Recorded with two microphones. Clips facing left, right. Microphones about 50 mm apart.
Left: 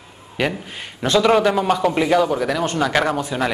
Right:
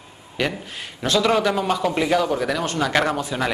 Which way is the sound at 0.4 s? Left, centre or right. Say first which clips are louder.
Left 2 dB; centre.